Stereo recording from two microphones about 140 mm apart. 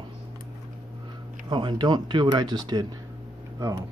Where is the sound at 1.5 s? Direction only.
35° right (ahead or behind).